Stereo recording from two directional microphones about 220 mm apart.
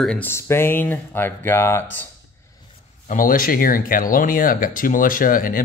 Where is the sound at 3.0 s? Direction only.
40° left (ahead or behind).